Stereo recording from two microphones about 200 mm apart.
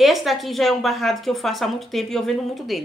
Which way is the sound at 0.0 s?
Centre (ahead or behind).